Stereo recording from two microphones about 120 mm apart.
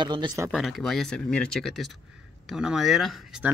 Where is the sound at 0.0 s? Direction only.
40° right (ahead or behind).